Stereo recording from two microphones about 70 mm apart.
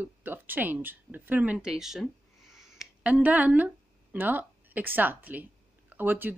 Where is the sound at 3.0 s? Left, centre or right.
Right.